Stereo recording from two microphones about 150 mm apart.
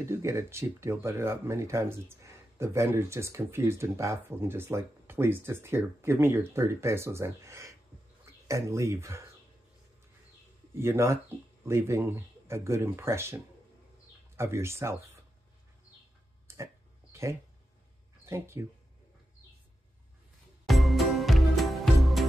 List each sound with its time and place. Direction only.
0.1 s speech: 20° right (ahead or behind)
10.7 s speech: 15° right (ahead or behind)
16.5 s a sound: 15° right (ahead or behind)
18.2 s speech: 20° right (ahead or behind)
20.6 s music: centre (ahead or behind)